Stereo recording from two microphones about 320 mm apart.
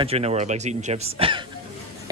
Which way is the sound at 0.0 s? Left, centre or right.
Centre.